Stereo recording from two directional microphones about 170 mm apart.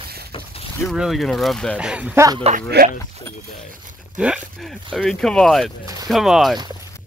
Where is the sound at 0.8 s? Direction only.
Centre (ahead or behind).